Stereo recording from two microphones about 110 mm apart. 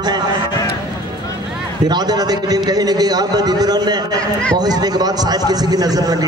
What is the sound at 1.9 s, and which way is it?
A man's voice, 40° right (ahead or behind).